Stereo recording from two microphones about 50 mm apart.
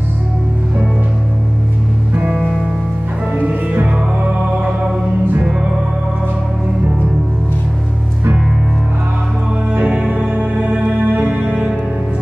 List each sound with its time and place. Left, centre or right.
2.3 s music: centre
3.8 s music: right
9.8 s music: right
11.4 s music: right